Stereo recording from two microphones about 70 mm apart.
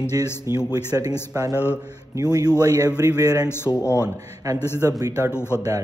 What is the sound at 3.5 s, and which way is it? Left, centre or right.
Speech, left.